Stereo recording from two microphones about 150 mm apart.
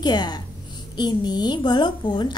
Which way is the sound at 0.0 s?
30° left (ahead or behind).